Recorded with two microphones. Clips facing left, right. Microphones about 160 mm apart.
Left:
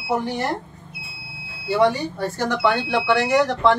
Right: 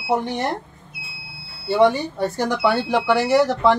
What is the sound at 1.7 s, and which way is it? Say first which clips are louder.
Speech: right 2 dB; 25° right (ahead or behind).